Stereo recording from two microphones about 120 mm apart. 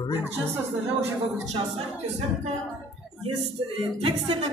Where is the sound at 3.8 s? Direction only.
50° right (ahead or behind).